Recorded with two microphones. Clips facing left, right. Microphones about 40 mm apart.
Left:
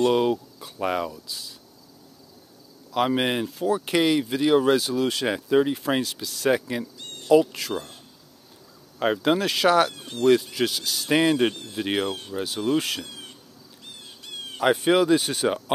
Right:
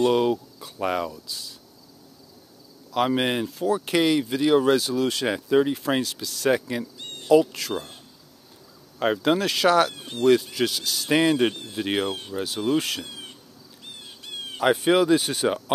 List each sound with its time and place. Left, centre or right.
0.1 s speech: centre
2.9 s speech: centre
7.0 s a sound: right
7.2 s speech: centre
9.0 s speech: centre
9.9 s speech: right
10.2 s speech: centre
12.1 s speech: right
12.4 s speech: centre
13.0 s insect: right
13.9 s bird: right
14.6 s speech: centre